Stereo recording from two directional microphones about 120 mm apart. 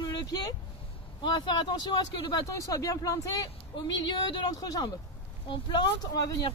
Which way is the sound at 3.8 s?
40° left (ahead or behind).